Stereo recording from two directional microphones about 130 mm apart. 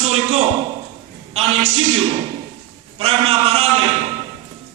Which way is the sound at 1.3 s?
55° right (ahead or behind).